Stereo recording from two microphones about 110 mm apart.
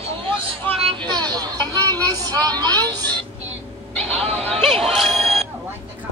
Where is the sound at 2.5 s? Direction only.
40° right (ahead or behind).